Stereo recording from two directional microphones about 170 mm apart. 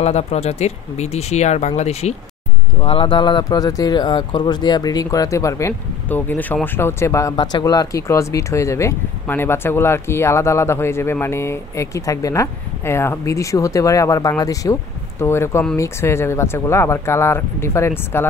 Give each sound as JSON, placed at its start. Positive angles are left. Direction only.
{"t": 0.0, "sound": "speech", "side_deg": 40}